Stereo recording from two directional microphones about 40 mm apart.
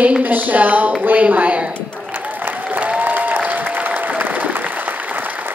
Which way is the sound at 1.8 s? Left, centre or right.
Left.